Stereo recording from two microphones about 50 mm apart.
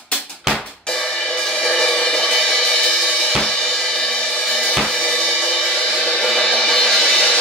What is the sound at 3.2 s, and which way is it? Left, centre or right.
Music, centre.